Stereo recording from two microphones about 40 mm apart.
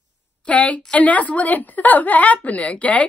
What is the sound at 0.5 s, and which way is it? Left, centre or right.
A woman's voice, left.